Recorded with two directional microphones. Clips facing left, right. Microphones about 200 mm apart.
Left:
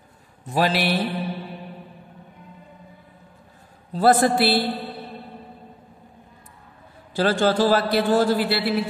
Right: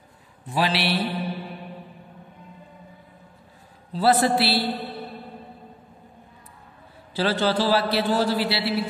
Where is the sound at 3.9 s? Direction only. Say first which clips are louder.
Left 2 dB; 50° left (ahead or behind).